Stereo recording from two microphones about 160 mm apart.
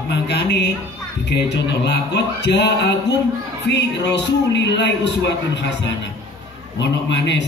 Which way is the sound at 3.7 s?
90° left.